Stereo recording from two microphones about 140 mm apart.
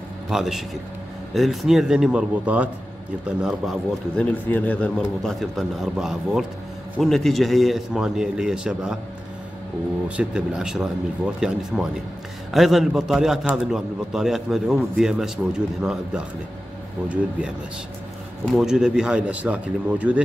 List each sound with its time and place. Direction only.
0.3 s speech: centre (ahead or behind)
4.2 s speech: 10° left (ahead or behind); by 9.0 s 5° right (ahead or behind)
10.0 s speech: 5° right (ahead or behind)
18.4 s speech: centre (ahead or behind)